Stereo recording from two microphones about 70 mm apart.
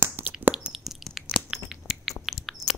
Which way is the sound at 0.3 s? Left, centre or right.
Right.